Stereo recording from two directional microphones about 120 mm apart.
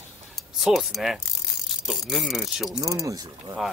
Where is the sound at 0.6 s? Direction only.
Centre (ahead or behind).